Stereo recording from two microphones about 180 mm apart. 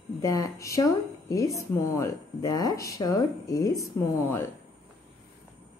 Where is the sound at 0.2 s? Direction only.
20° left (ahead or behind).